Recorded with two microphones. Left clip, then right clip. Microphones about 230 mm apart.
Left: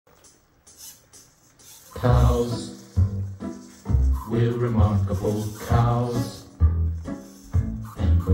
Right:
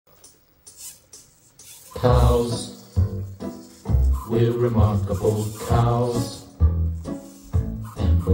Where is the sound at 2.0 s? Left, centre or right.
Right.